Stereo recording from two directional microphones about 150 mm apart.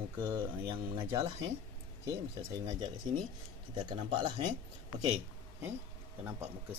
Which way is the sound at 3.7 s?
30° right (ahead or behind).